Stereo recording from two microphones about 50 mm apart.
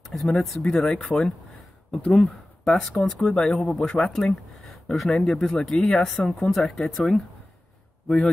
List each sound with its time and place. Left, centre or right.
0.1 s speech: centre; by 2.1 s left
2.1 s speech: centre